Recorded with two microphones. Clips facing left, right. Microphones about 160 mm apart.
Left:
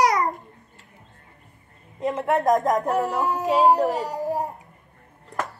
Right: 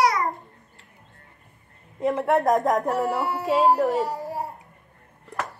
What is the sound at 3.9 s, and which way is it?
Speech, 75° left (ahead or behind).